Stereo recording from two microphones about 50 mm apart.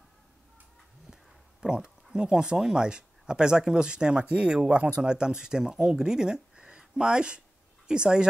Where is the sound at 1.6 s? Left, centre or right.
Centre.